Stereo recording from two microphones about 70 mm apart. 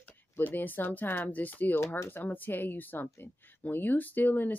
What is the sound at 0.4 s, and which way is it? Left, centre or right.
Speech, left.